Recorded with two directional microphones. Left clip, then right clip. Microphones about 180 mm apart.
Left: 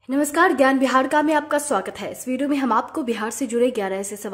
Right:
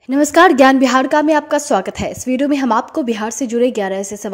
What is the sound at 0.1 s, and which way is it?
A woman's voice, 35° right (ahead or behind).